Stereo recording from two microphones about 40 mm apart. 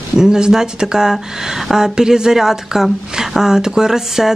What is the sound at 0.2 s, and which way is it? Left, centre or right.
Speech, centre.